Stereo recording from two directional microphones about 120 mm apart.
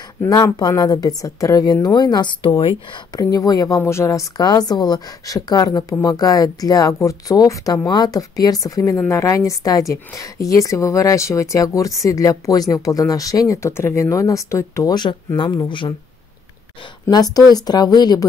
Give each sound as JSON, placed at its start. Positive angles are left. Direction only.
{"t": 0.3, "sound": "a woman's voice", "side_deg": 30}
{"t": 2.9, "sound": "a woman's voice", "side_deg": 30}
{"t": 15.0, "sound": "a woman's voice", "side_deg": 40}
{"t": 17.1, "sound": "a woman's voice", "side_deg": 30}